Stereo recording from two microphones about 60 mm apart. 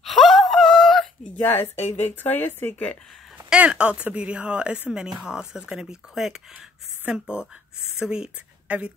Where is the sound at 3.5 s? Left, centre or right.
Centre.